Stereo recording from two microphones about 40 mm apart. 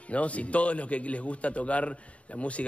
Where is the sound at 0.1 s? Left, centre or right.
Left.